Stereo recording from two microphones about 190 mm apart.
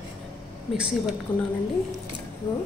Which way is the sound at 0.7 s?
5° right (ahead or behind).